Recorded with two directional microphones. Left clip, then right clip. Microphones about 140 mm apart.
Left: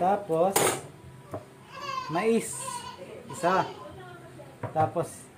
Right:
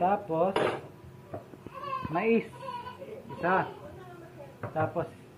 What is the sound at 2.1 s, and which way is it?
Speech, 40° left (ahead or behind).